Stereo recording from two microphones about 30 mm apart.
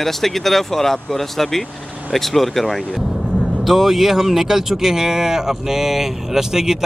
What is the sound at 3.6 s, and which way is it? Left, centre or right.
Speech, centre.